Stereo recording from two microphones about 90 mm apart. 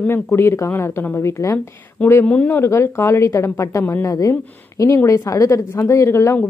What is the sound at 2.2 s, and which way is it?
Speech, 10° left (ahead or behind).